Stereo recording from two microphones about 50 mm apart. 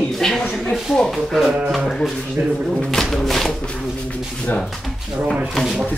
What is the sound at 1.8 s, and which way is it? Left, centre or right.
Speech, centre.